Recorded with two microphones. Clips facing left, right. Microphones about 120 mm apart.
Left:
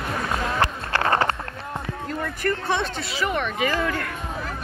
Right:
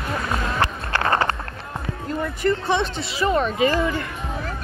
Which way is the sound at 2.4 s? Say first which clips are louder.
Right 4 dB; 15° right (ahead or behind).